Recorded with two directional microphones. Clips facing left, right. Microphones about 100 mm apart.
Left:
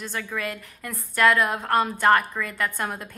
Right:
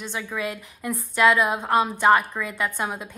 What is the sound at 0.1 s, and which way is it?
A woman's voice, 10° right (ahead or behind).